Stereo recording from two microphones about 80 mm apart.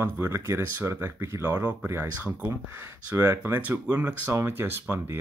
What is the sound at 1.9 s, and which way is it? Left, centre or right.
Speech, right.